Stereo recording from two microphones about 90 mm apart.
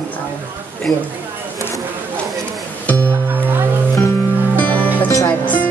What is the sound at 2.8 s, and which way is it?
Music, 20° left (ahead or behind).